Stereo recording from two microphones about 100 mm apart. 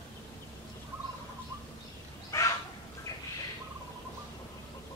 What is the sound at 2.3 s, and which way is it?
Bird, 30° left (ahead or behind).